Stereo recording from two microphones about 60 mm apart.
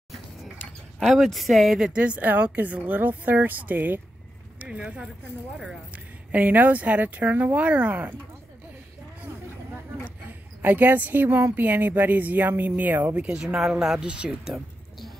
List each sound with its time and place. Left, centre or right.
0.9 s speech: centre
1.9 s speech: centre
4.6 s speech: centre
5.9 s speech: right
10.6 s speech: right
13.3 s speech: centre
14.5 s music: centre